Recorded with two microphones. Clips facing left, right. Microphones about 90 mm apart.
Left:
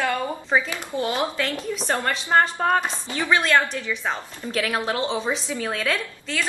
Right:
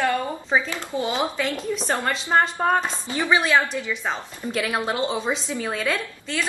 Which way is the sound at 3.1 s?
20° right (ahead or behind).